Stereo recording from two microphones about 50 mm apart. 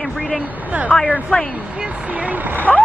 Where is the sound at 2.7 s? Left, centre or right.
Centre.